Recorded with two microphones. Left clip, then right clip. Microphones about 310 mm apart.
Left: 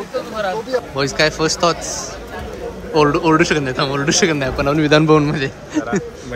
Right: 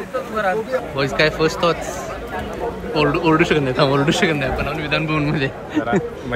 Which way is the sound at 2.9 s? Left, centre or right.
Centre.